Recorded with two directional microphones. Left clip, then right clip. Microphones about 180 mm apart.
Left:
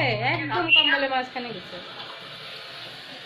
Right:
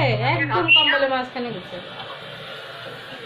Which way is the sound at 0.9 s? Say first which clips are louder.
Right 3 dB; 15° left (ahead or behind).